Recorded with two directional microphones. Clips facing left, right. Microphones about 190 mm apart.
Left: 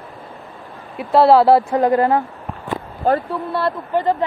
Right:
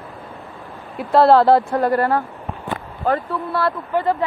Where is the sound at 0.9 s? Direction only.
5° left (ahead or behind).